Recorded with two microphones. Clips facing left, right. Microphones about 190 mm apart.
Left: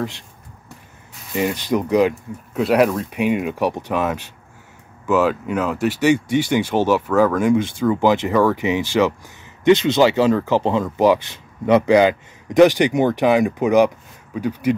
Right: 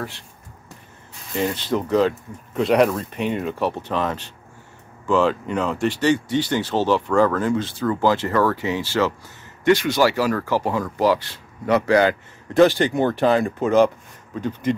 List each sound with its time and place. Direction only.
1.3 s speech: 15° left (ahead or behind)
2.5 s speech: 5° left (ahead or behind)